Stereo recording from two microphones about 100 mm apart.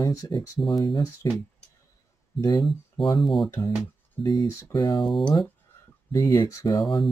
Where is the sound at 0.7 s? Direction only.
55° left (ahead or behind).